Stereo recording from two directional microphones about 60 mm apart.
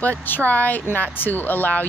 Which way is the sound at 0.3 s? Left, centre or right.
Left.